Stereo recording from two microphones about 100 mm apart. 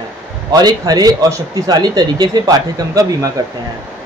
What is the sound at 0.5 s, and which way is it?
A man's voice, 40° right (ahead or behind).